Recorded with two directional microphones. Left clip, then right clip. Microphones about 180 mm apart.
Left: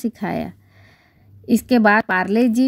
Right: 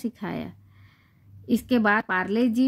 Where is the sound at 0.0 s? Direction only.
30° left (ahead or behind).